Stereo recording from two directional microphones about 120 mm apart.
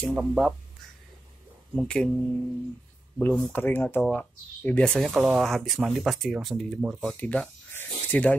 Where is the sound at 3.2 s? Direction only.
15° left (ahead or behind).